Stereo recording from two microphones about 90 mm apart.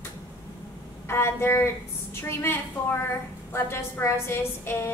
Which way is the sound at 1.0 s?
25° left (ahead or behind).